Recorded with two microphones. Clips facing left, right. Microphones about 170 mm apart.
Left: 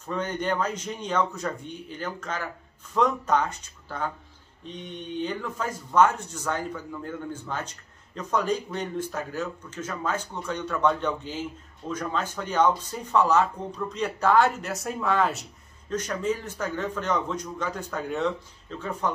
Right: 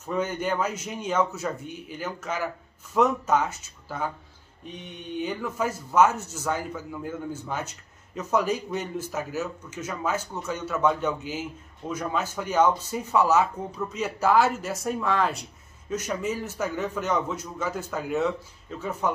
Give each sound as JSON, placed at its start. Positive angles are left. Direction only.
{"t": 0.0, "sound": "speech", "side_deg": -5}